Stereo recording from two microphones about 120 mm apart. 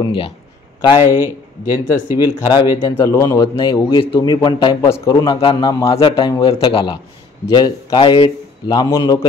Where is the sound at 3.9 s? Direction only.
45° left (ahead or behind).